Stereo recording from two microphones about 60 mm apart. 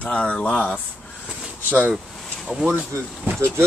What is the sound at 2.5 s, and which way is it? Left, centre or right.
Speech, right.